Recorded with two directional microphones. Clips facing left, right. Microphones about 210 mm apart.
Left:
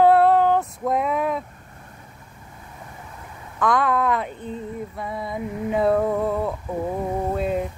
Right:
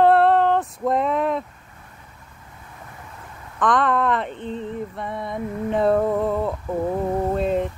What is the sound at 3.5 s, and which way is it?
Female singing, 5° left (ahead or behind).